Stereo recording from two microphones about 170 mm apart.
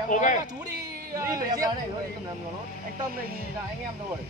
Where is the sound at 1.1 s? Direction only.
20° right (ahead or behind).